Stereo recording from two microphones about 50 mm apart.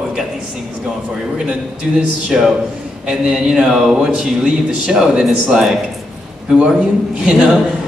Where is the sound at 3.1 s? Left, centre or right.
Centre.